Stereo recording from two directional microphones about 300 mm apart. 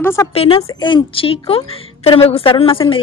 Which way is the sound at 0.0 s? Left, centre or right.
Centre.